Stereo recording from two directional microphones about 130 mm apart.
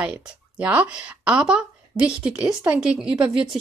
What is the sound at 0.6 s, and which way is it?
Speech, 10° right (ahead or behind).